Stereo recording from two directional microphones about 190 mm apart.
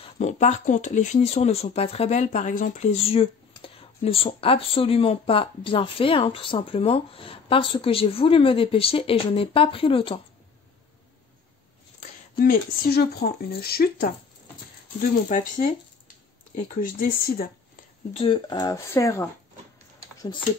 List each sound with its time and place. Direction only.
0.0 s speech: 35° left (ahead or behind)
12.0 s speech: 50° left (ahead or behind)
15.0 s speech: 40° left (ahead or behind)
18.1 s speech: 25° left (ahead or behind)